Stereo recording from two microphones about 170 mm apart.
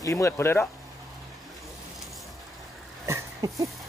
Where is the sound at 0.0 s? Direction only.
15° left (ahead or behind).